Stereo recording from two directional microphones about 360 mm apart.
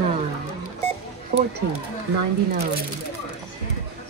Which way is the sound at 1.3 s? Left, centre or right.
Right.